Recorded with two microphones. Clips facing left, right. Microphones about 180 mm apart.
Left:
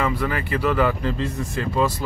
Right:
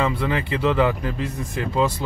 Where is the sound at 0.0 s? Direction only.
25° right (ahead or behind).